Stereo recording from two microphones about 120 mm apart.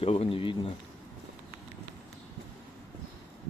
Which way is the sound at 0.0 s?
55° left (ahead or behind).